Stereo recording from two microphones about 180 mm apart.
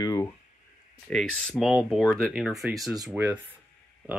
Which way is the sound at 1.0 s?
5° left (ahead or behind).